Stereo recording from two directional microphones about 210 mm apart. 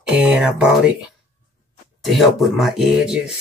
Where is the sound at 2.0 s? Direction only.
Centre (ahead or behind).